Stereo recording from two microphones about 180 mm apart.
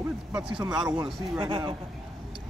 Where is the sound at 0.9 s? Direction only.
25° right (ahead or behind).